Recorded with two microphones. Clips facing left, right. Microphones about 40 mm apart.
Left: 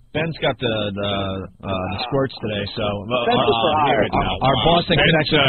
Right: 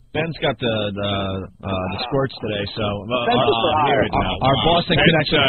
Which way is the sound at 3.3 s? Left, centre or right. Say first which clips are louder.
Even; centre.